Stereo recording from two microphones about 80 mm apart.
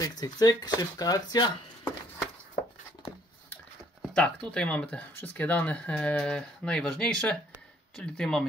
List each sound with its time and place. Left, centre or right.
0.0 s speech: left
4.1 s speech: centre